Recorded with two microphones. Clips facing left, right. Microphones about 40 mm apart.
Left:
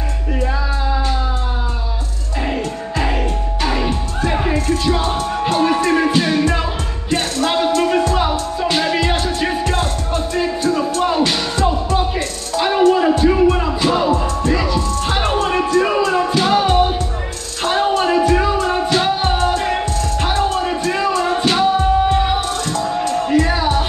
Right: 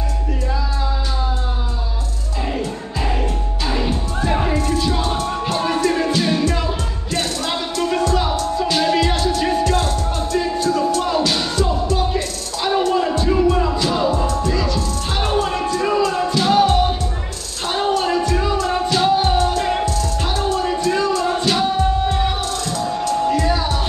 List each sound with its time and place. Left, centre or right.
2.5 s music: left
17.7 s music: left